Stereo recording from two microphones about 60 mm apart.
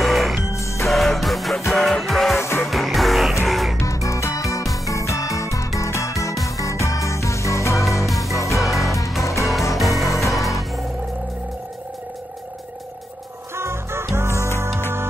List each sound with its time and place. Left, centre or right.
0.0 s music: centre
0.5 s music: left
0.8 s music: centre
3.8 s music: left
8.5 s music: centre
9.2 s music: left
9.8 s music: centre
13.6 s music: right